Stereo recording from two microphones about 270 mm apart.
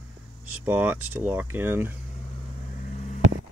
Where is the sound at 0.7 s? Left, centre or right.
Centre.